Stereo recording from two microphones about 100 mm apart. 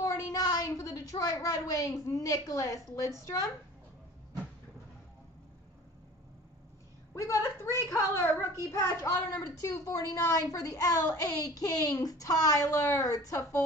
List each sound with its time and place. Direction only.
0.0 s a woman's voice: 35° left (ahead or behind)
7.2 s a woman's voice: 30° left (ahead or behind)